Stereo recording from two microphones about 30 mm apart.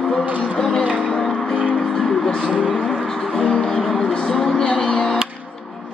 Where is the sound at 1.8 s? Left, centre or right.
Centre.